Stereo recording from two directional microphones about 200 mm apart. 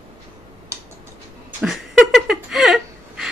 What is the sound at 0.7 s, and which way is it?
Tick-tock, 15° right (ahead or behind).